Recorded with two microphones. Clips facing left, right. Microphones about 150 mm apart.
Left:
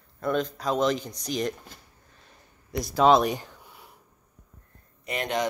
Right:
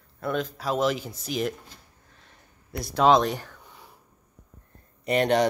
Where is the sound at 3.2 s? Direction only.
15° left (ahead or behind).